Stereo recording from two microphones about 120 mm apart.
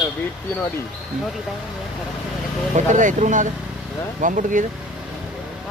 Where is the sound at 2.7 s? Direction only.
85° right.